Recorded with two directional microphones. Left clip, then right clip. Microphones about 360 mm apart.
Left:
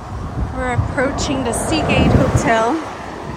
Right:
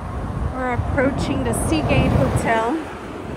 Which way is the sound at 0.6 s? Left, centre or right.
Centre.